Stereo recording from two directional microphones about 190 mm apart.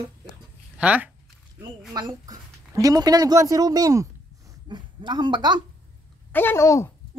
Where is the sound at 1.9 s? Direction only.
20° right (ahead or behind).